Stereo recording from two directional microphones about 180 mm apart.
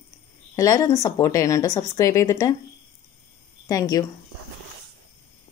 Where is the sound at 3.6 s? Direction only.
20° left (ahead or behind).